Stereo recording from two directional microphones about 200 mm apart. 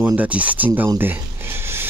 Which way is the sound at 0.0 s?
10° right (ahead or behind).